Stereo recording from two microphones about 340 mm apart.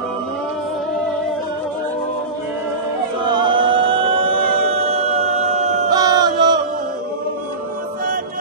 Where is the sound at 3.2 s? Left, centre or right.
Centre.